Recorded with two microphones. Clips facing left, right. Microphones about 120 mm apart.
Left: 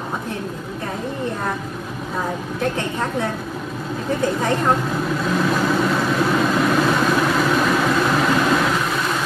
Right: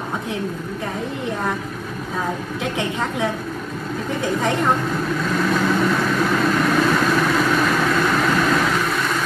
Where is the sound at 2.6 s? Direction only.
15° right (ahead or behind).